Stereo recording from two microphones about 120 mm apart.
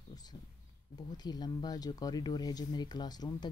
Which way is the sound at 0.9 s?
35° left (ahead or behind).